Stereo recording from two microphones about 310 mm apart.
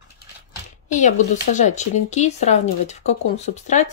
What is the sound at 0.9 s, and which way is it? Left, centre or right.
Speech, left.